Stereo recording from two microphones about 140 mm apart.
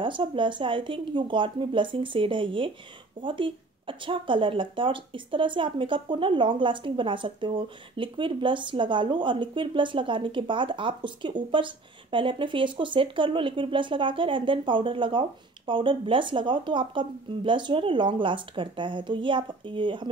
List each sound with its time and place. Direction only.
0.0 s speech: 35° right (ahead or behind)